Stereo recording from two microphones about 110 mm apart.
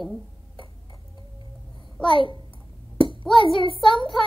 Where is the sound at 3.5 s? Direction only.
55° left (ahead or behind).